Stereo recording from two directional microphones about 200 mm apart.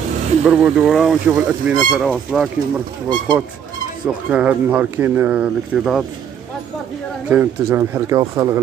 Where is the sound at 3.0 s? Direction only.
20° right (ahead or behind).